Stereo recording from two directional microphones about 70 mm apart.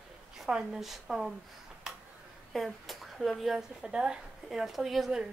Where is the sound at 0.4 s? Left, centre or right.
Centre.